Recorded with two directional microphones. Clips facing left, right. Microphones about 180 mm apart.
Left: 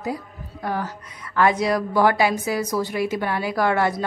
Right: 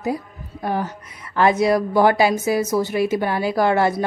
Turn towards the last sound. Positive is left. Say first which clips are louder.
# right 3 dB
turn(degrees=-30)  # may be behind; listen again after turning